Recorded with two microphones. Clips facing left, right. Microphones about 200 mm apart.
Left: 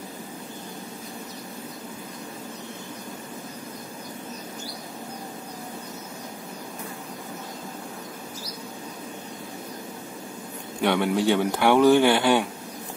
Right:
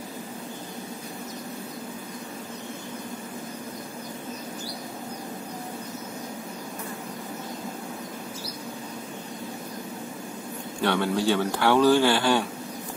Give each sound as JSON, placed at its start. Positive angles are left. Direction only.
{"t": 10.8, "sound": "speech", "side_deg": 15}